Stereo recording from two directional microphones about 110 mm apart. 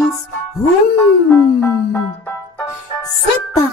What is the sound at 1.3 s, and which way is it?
Music, 20° left (ahead or behind).